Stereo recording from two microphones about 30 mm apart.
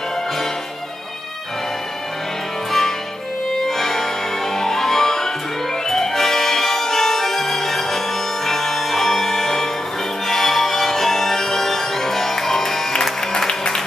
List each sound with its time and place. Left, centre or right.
3.6 s music: centre
13.5 s music: left